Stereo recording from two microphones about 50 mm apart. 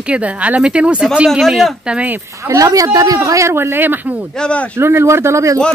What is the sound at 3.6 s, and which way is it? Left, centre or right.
Speech, right.